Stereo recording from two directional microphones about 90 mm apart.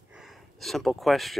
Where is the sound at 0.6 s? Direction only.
Centre (ahead or behind).